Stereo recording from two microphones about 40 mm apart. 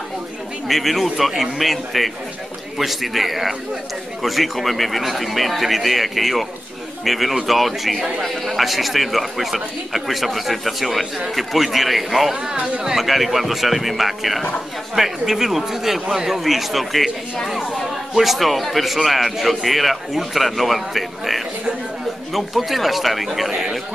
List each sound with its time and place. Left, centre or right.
0.7 s speech: centre
18.1 s speech: centre